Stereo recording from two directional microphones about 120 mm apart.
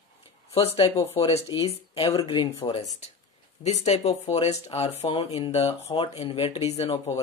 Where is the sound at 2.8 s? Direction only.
70° left (ahead or behind).